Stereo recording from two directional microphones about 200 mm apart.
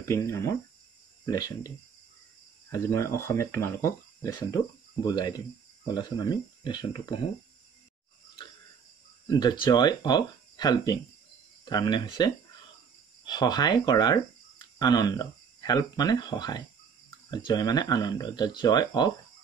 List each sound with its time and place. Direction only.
0.0 s speech: 15° left (ahead or behind)
2.7 s speech: 15° left (ahead or behind)
9.3 s speech: 20° left (ahead or behind)